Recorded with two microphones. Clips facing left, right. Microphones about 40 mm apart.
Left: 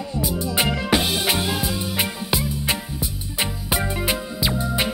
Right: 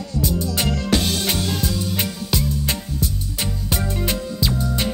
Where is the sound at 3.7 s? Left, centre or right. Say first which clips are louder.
Left 1 dB; centre.